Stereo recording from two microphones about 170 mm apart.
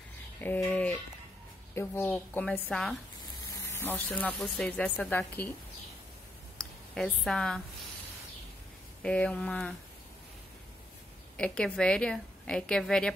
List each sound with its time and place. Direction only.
0.4 s speech: 10° left (ahead or behind)
3.6 s speech: 15° left (ahead or behind)
6.6 s a woman's voice: 5° left (ahead or behind)
9.0 s a woman's voice: 5° left (ahead or behind)
11.3 s a woman's voice: 5° left (ahead or behind)